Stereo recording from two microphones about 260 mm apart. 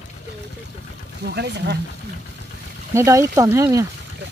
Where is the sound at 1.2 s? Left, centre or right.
Right.